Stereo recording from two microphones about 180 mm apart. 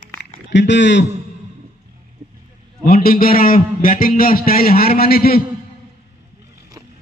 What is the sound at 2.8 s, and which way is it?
A man's voice, 55° left (ahead or behind).